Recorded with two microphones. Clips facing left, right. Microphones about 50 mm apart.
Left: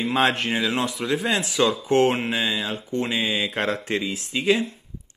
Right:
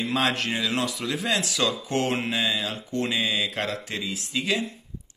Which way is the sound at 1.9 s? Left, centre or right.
Left.